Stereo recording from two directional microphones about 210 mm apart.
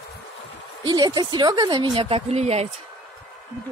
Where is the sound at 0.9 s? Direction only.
20° right (ahead or behind).